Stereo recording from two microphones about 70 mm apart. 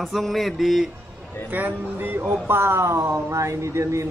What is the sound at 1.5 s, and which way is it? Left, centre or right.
Speech, right.